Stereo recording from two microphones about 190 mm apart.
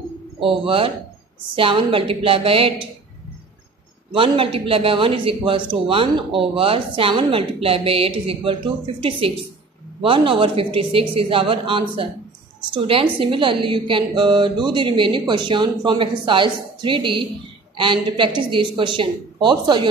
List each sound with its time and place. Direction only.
0.4 s speech: 30° right (ahead or behind)
4.1 s speech: 30° right (ahead or behind)